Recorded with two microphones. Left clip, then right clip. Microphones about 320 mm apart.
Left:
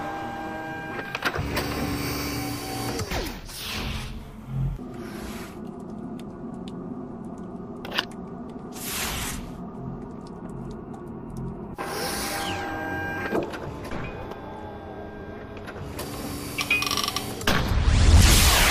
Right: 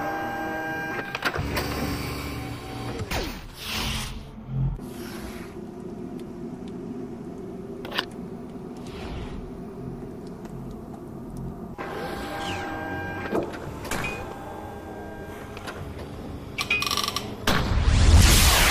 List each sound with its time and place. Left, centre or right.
0.0 s printer: centre
1.1 s power windows: centre
3.7 s a sound: centre
12.0 s music: centre
12.4 s power windows: centre
16.5 s mechanisms: centre